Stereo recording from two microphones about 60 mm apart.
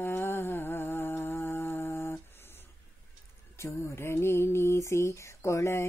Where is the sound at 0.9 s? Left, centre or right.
Left.